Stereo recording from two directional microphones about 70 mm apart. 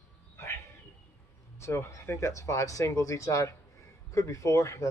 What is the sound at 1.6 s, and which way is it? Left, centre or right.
Speech, left.